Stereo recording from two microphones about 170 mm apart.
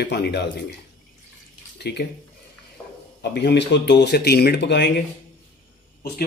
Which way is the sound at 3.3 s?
85° left.